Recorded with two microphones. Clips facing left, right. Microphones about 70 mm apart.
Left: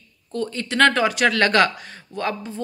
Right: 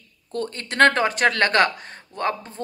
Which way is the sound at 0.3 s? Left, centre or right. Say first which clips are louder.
Left 3 dB; right.